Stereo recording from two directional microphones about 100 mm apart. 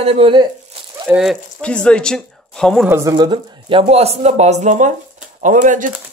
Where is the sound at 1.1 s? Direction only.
5° right (ahead or behind).